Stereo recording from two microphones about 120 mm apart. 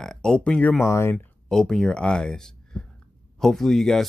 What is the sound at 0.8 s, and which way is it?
Speech, 20° left (ahead or behind).